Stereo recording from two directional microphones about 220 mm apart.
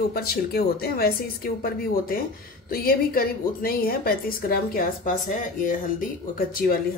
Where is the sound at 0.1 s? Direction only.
45° left (ahead or behind).